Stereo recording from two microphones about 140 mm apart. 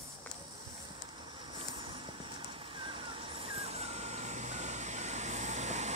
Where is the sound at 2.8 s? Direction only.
40° right (ahead or behind).